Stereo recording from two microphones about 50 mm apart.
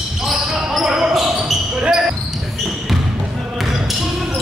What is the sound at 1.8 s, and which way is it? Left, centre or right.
Basketball bounce, centre.